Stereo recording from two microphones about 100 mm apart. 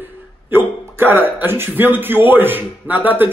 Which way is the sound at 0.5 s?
20° right (ahead or behind).